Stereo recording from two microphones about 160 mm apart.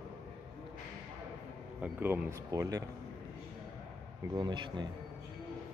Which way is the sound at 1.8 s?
10° right (ahead or behind).